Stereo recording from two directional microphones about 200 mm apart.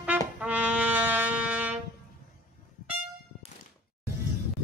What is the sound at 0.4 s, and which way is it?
Brass instrument, 5° right (ahead or behind).